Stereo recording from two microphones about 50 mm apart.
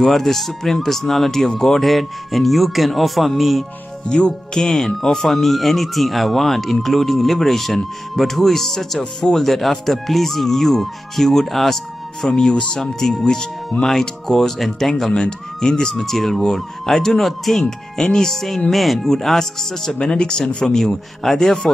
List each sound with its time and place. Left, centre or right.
0.0 s speech: centre
4.1 s speech: left
4.6 s speech: centre
12.3 s speech: centre
20.0 s speech: centre